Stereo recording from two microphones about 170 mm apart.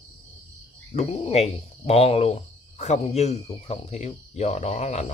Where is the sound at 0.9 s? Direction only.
35° left (ahead or behind).